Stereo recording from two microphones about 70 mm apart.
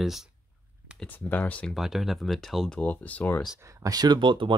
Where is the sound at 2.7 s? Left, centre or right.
Left.